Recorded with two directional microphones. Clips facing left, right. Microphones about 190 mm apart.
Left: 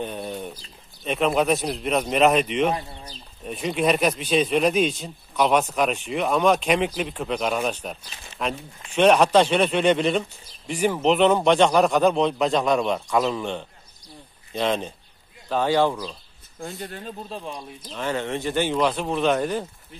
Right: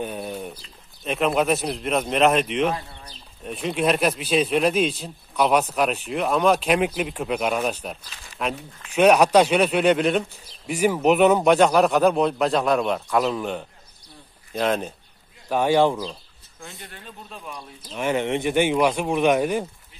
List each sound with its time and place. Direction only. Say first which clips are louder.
0.0 s speech: even; 5° right (ahead or behind)
2.7 s speech: left 2 dB; 20° left (ahead or behind)
3.4 s speech: even; centre (ahead or behind); by 16.2 s 20° right (ahead or behind)
16.6 s speech: left 8 dB; 45° left (ahead or behind); by 17.6 s 30° left (ahead or behind)
17.9 s speech: right 4 dB; 15° right (ahead or behind)